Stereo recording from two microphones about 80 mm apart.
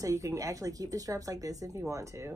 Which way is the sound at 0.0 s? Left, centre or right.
Right.